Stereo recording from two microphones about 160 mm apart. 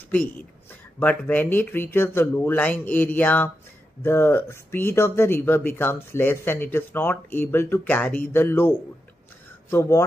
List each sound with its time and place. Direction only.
0.9 s speech: 10° left (ahead or behind)